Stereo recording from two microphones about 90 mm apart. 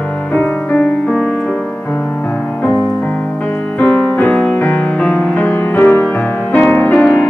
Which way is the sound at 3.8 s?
15° left (ahead or behind).